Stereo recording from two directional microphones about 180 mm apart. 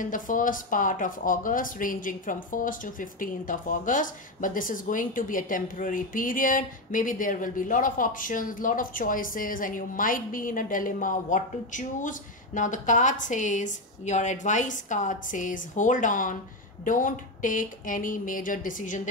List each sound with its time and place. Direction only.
0.0 s speech: 45° left (ahead or behind)